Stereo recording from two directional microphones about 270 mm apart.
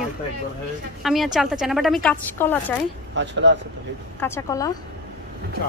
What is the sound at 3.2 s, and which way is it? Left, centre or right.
Speech, right.